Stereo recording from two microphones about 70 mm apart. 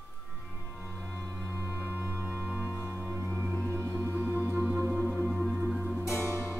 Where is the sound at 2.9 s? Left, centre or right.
Centre.